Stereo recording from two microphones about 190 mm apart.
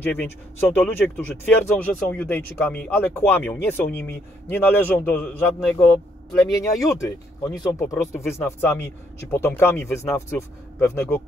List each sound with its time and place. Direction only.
0.0 s speech: 10° left (ahead or behind)